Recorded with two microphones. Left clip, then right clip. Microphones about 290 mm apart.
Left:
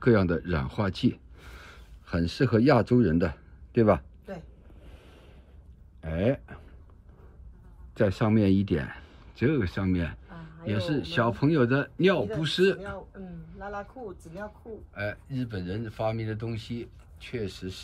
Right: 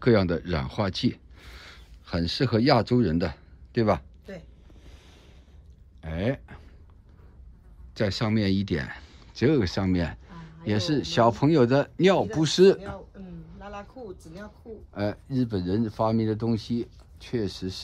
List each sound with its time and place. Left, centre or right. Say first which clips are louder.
0.0 s speech: right 1 dB; centre
4.8 s ocean: left 1 dB; centre
5.9 s speech: left 2 dB; centre
7.9 s speech: left 2 dB; centre
13.6 s a sound: left 3 dB; left
15.0 s speech: right 5 dB; centre